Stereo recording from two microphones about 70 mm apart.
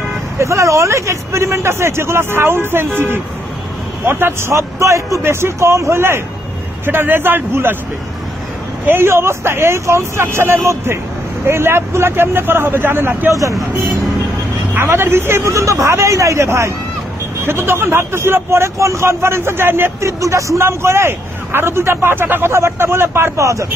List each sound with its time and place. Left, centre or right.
0.4 s speech: right
8.8 s speech: right
14.7 s speech: right